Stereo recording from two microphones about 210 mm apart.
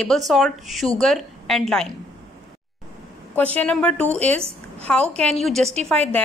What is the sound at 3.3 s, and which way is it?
Speech, 5° left (ahead or behind).